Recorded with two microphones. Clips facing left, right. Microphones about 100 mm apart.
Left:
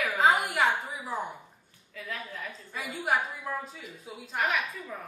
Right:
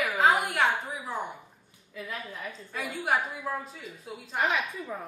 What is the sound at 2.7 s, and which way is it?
Speech, centre (ahead or behind).